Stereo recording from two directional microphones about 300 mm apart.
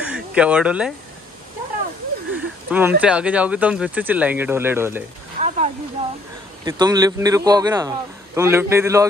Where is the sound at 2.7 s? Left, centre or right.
Centre.